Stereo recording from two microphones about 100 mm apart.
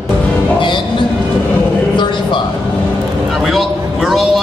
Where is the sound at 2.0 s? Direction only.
50° left (ahead or behind).